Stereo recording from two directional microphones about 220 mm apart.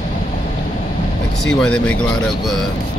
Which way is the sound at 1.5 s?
5° left (ahead or behind).